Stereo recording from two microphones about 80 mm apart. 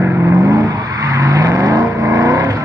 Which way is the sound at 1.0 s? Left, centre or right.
Right.